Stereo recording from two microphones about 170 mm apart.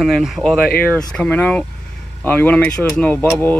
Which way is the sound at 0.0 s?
Centre (ahead or behind).